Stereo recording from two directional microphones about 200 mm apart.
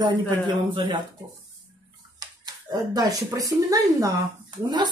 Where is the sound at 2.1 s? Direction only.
20° right (ahead or behind).